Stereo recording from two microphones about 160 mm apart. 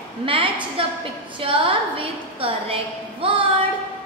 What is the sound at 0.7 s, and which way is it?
A woman's voice, 35° right (ahead or behind).